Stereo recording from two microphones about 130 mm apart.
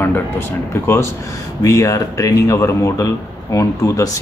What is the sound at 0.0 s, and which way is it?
Speech, 15° left (ahead or behind).